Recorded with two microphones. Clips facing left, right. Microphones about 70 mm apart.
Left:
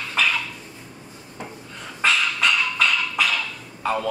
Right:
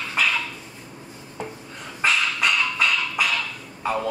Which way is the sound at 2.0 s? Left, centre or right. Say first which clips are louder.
Left 1 dB; centre.